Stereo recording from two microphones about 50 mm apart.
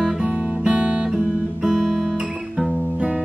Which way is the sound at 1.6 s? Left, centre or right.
Centre.